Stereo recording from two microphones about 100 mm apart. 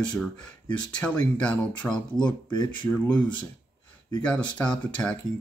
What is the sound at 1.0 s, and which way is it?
Speech, 10° left (ahead or behind).